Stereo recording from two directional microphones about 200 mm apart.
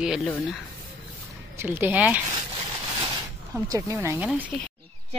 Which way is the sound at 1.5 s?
10° right (ahead or behind).